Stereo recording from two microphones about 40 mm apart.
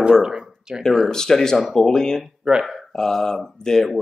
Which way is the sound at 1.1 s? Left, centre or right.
Centre.